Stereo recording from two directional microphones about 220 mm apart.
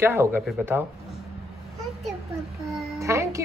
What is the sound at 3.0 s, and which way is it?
Music, 15° right (ahead or behind).